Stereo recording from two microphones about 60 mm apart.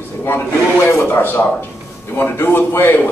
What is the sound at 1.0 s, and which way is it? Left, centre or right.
A man's voice, left.